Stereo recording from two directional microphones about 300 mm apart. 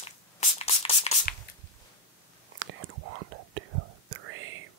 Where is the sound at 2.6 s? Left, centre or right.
Right.